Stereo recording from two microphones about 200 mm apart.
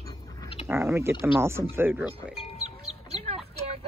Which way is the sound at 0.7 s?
10° right (ahead or behind).